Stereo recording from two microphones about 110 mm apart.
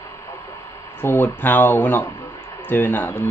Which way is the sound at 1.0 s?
20° left (ahead or behind).